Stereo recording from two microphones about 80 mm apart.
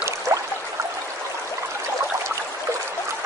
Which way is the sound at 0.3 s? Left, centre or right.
Right.